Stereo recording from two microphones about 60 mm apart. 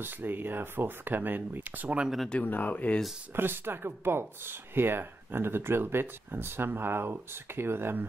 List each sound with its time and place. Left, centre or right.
0.0 s speech: right
2.4 s speech: left
3.3 s speech: right